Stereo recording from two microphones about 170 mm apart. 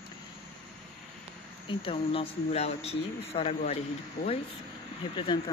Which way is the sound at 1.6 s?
30° left (ahead or behind).